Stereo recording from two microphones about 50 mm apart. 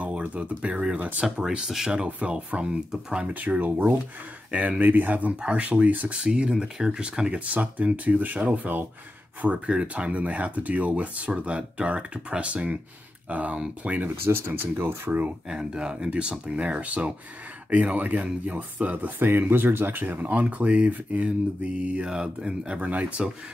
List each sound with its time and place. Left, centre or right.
0.0 s speech: right
1.2 s speech: centre
2.0 s speech: right
2.3 s speech: centre
3.3 s speech: right
6.2 s speech: centre
14.2 s speech: right
15.4 s speech: centre